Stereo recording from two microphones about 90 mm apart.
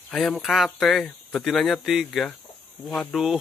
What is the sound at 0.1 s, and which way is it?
Speech, 5° left (ahead or behind).